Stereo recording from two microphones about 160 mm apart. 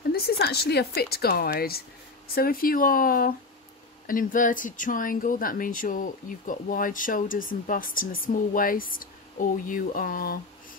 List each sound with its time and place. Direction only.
0.1 s speech: 80° left; by 10.4 s 65° left (ahead or behind)